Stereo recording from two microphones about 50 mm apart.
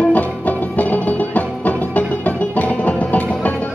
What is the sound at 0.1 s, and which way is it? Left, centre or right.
Music, left.